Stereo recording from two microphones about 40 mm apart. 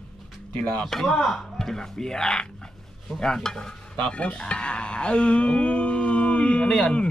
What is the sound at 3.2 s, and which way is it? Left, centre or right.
Stir, centre.